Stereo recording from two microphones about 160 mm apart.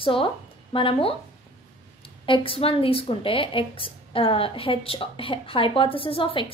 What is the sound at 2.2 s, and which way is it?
Speech, 35° left (ahead or behind).